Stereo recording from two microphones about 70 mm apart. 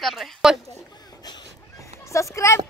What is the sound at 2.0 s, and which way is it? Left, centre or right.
Speech, left.